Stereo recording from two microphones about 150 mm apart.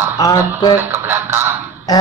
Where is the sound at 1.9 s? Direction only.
25° left (ahead or behind).